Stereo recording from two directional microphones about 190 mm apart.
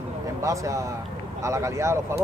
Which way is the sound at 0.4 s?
15° right (ahead or behind).